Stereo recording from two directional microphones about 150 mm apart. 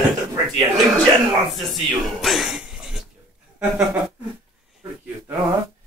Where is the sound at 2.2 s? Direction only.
Centre (ahead or behind).